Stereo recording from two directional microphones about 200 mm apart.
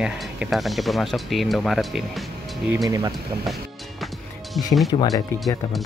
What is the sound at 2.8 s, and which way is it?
Speech, 20° right (ahead or behind).